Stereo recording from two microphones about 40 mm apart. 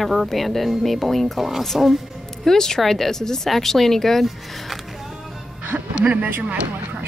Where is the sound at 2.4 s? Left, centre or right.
Centre.